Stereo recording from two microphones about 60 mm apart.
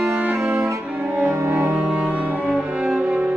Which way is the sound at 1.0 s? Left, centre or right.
Centre.